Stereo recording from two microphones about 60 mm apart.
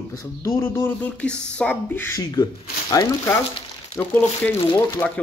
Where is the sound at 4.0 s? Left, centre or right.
Left.